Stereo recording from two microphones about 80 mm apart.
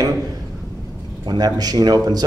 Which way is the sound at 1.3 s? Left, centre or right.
Right.